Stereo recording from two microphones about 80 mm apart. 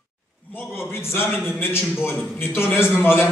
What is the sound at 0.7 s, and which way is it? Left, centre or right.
A man's voice, left.